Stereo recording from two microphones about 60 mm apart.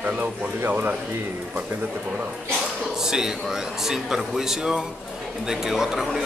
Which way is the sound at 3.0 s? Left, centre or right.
Centre.